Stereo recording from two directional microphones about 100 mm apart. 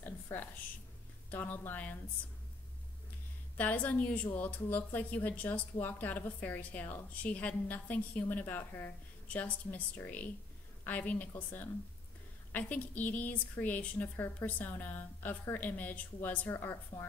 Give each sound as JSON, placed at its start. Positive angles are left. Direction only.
{"t": 0.0, "sound": "a sound", "side_deg": 20}
{"t": 1.3, "sound": "a woman's voice", "side_deg": 15}
{"t": 3.5, "sound": "a woman's voice", "side_deg": 15}